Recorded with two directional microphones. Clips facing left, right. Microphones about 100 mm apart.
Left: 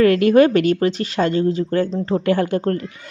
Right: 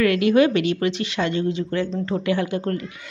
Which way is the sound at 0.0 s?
40° left (ahead or behind).